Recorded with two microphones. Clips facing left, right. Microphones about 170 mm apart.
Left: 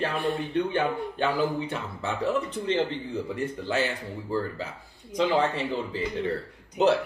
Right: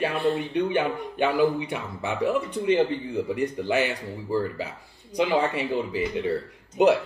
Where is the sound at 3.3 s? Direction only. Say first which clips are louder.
Right 3 dB; 15° right (ahead or behind).